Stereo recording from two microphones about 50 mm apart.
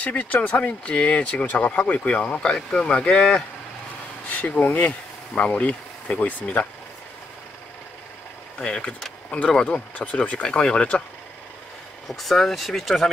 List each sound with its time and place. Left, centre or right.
0.0 s speech: left
4.3 s speech: left
8.5 s speech: left
10.4 s speech: centre
12.1 s speech: centre